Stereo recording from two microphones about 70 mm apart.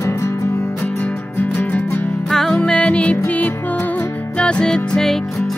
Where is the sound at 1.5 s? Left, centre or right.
Left.